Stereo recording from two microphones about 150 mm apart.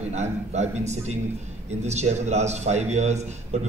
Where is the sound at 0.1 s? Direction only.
50° right (ahead or behind).